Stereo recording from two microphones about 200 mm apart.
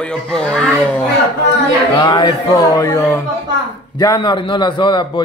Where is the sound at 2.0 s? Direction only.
20° left (ahead or behind).